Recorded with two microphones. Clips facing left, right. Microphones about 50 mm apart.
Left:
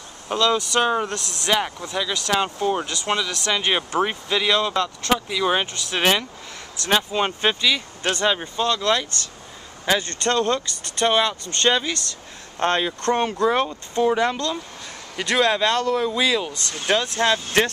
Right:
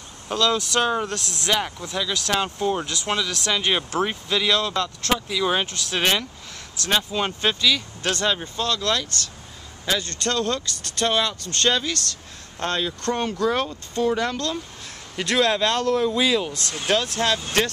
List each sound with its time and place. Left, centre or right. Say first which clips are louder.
0.3 s speech: left 2 dB; centre
12.5 s speech: left 4 dB; left; by 16.7 s centre
16.8 s speech: left 2 dB; centre